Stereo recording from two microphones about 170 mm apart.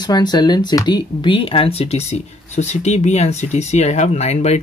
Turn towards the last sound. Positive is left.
turn(degrees=40)  # may be behind; listen again after turning